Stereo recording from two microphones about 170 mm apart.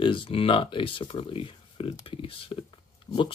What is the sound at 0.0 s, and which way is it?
Speech, 30° left (ahead or behind).